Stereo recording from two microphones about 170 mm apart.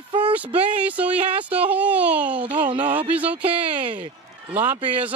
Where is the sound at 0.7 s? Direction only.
10° right (ahead or behind).